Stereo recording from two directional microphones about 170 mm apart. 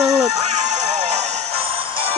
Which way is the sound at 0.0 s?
40° right (ahead or behind).